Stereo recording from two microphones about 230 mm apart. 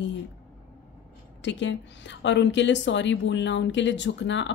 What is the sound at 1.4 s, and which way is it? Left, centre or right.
A woman's voice, left.